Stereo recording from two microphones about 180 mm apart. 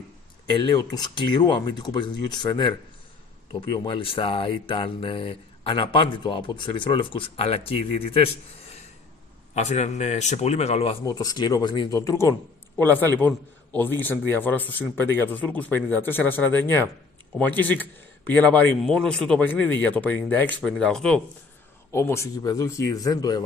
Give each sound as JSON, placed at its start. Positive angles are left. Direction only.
{"t": 0.5, "sound": "speech", "side_deg": 25}
{"t": 9.5, "sound": "speech", "side_deg": 40}
{"t": 11.1, "sound": "a man's voice", "side_deg": 20}
{"t": 21.9, "sound": "a man's voice", "side_deg": 15}